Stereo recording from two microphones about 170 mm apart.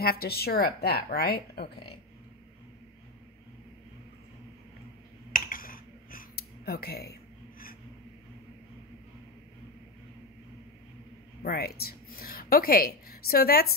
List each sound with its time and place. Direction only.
0.0 s speech: 65° left (ahead or behind)
5.3 s a sound: 55° left (ahead or behind)
11.4 s a woman's voice: 65° left (ahead or behind)